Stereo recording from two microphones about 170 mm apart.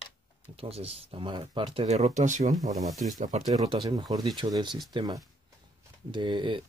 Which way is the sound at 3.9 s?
25° right (ahead or behind).